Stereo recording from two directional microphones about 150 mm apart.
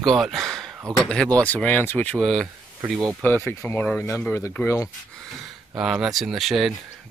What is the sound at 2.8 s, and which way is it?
Speech, 20° right (ahead or behind).